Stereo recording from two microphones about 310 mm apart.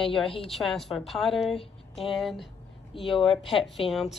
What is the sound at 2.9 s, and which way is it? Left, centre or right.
Speech, centre.